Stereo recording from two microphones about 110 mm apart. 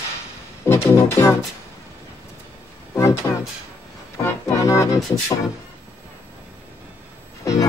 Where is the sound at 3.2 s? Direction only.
30° left (ahead or behind).